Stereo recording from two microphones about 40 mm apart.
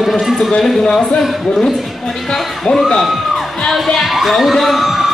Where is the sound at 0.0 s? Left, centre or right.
Centre.